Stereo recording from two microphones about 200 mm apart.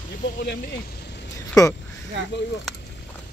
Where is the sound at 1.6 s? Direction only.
15° left (ahead or behind).